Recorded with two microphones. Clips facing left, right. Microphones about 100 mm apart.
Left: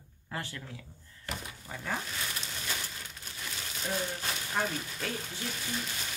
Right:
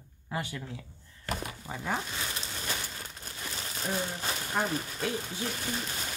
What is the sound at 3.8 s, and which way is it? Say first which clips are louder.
Speech: right 1 dB; 25° right (ahead or behind).